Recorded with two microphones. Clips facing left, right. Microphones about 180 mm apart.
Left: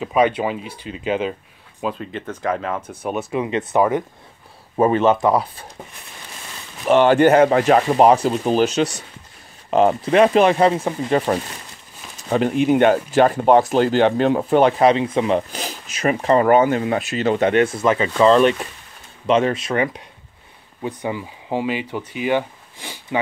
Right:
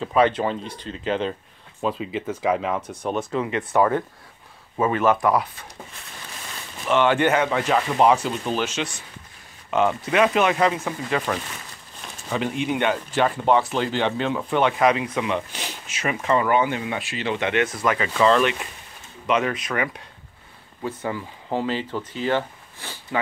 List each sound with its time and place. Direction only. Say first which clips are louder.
0.0 s speech: left 2 dB; 10° left (ahead or behind)
1.8 s speech: even; centre (ahead or behind)
3.4 s speech: left 3 dB; 20° left (ahead or behind)
4.7 s speech: left 5 dB; 30° left (ahead or behind)
6.9 s speech: left 6 dB; 40° left (ahead or behind)
12.3 s speech: left 8 dB; 45° left (ahead or behind); by 20.0 s 30° left (ahead or behind)
20.8 s speech: left 3 dB; 15° left (ahead or behind)